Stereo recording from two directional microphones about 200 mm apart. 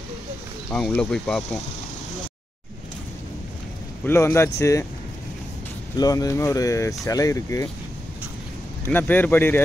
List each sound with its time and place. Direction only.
0.7 s speech: 5° left (ahead or behind)
4.0 s speech: 15° left (ahead or behind)
5.9 s speech: 15° left (ahead or behind)
8.8 s speech: 10° left (ahead or behind)